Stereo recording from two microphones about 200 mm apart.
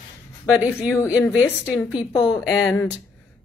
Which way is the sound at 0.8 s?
15° left (ahead or behind).